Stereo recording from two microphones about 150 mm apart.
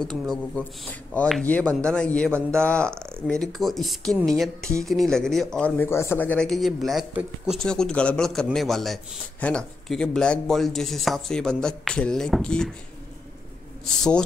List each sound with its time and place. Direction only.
0.0 s a man's voice: 5° left (ahead or behind)
2.9 s speech: 15° right (ahead or behind)
3.3 s a man's voice: 5° left (ahead or behind)
13.8 s a man's voice: 5° left (ahead or behind)